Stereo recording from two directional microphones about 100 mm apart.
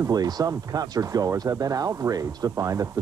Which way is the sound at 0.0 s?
40° right (ahead or behind).